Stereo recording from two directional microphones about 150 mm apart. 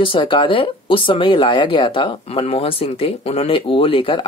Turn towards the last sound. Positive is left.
turn(degrees=35)  # may be behind; listen again after turning